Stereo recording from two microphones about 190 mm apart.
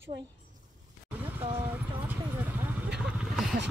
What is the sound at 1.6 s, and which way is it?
Vehicle, 10° right (ahead or behind).